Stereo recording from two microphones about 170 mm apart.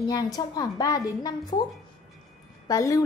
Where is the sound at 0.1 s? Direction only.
20° left (ahead or behind).